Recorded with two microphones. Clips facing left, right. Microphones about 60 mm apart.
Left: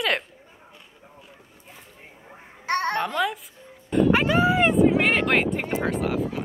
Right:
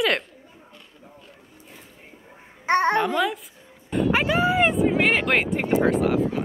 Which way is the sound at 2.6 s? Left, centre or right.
Right.